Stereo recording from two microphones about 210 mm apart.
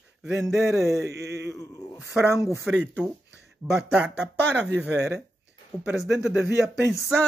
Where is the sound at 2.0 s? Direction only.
Centre (ahead or behind).